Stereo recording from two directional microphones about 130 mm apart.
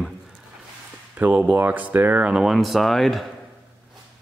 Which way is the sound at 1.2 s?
10° right (ahead or behind).